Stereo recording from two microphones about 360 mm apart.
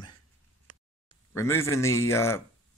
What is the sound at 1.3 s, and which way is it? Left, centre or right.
Speech, centre.